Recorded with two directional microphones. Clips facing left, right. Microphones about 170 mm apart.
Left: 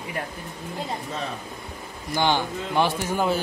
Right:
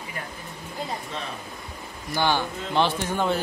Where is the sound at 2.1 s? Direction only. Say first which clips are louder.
Left 1 dB; 15° left (ahead or behind).